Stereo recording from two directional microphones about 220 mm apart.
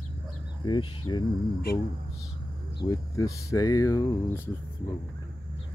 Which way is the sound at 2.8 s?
15° left (ahead or behind).